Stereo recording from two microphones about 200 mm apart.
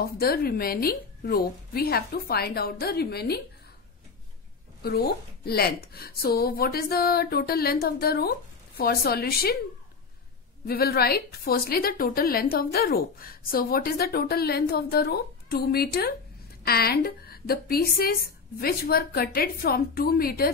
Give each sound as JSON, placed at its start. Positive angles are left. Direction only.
{"t": 0.0, "sound": "a woman's voice", "side_deg": 50}
{"t": 4.8, "sound": "a woman's voice", "side_deg": 50}
{"t": 10.7, "sound": "a woman's voice", "side_deg": 50}